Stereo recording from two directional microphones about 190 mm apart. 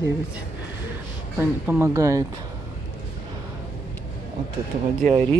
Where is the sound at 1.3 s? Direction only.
10° right (ahead or behind).